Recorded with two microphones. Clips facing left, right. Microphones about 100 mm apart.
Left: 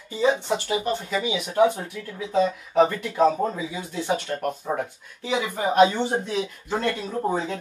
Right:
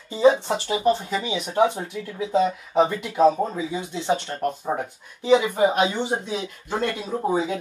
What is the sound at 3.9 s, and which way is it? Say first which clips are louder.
Speech: even; 25° right (ahead or behind).